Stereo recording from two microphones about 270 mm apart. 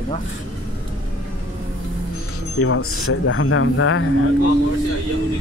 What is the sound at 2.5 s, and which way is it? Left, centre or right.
Speech, left.